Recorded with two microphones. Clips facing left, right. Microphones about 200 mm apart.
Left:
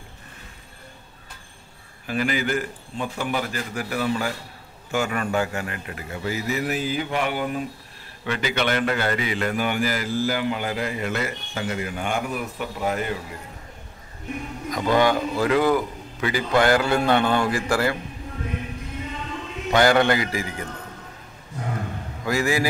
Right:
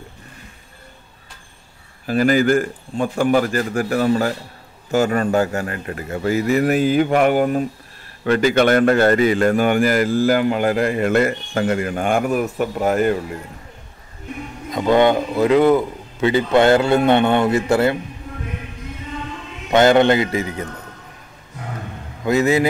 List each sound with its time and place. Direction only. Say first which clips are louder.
2.0 s a man's voice: right 9 dB; 40° right (ahead or behind)
14.7 s a man's voice: right 5 dB; 20° right (ahead or behind)
19.7 s a man's voice: right 5 dB; 20° right (ahead or behind)
22.2 s a man's voice: right 7 dB; 20° right (ahead or behind)